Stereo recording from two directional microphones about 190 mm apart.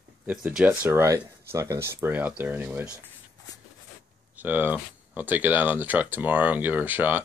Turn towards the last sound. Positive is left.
turn(degrees=-10)  # may be behind; listen again after turning